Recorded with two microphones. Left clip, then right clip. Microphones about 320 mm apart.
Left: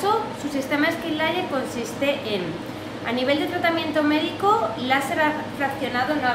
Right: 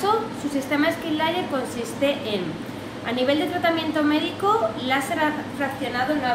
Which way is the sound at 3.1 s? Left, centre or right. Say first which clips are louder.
Even; centre.